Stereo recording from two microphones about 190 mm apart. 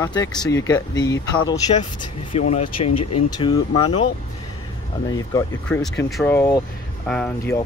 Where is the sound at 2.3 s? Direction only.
35° left (ahead or behind).